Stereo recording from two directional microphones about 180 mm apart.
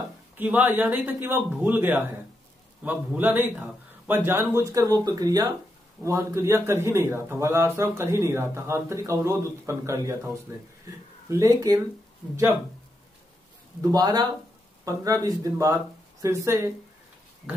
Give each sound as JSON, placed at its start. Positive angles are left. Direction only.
{"t": 0.4, "sound": "a man's voice", "side_deg": -10}
{"t": 13.7, "sound": "a man's voice", "side_deg": -20}